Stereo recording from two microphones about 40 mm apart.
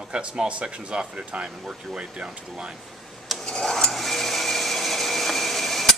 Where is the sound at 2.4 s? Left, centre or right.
Right.